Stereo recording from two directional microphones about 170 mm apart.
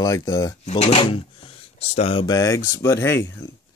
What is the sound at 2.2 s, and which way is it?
Speech, 20° left (ahead or behind).